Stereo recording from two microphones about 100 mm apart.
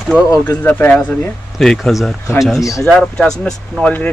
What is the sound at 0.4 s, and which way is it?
Speech, 15° left (ahead or behind).